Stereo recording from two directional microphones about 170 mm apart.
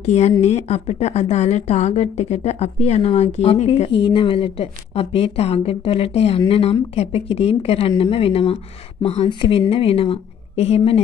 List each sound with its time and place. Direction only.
0.0 s a woman's voice: 40° left (ahead or behind)